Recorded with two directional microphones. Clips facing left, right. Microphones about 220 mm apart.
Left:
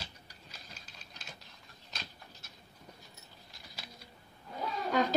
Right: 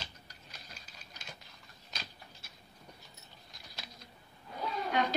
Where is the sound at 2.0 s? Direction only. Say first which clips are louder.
Left 1 dB; 5° right (ahead or behind).